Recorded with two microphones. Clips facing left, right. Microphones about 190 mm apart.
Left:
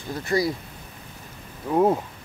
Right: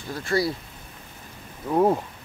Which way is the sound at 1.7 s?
5° left (ahead or behind).